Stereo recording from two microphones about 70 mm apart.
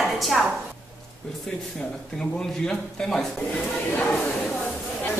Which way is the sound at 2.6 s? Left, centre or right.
Centre.